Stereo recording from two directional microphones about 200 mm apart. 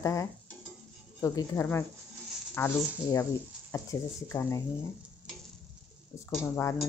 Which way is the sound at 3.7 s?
15° left (ahead or behind).